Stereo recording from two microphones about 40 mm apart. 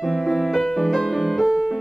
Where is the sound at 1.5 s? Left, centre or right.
Centre.